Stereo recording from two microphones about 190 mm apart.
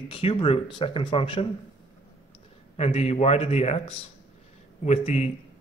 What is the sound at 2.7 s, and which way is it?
Speech, 35° left (ahead or behind).